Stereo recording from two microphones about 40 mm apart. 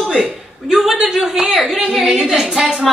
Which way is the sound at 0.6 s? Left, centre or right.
Centre.